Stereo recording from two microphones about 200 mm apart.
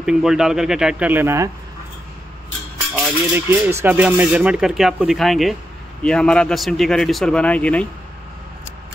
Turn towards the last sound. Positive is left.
turn(degrees=5)  # may be behind; listen again after turning